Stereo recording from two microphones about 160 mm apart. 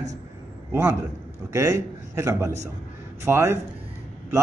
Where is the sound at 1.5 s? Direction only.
20° right (ahead or behind).